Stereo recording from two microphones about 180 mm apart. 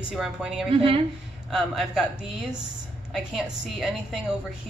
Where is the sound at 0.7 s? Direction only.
30° right (ahead or behind).